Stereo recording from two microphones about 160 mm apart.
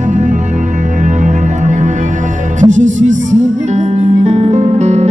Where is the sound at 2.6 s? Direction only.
50° right (ahead or behind).